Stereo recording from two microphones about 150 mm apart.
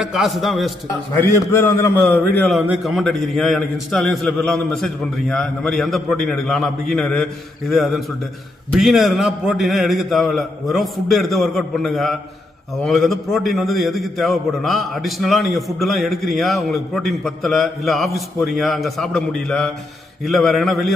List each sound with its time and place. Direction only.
0.0 s a man's voice: centre (ahead or behind)
1.1 s a man's voice: 15° left (ahead or behind)
2.0 s a man's voice: 10° left (ahead or behind)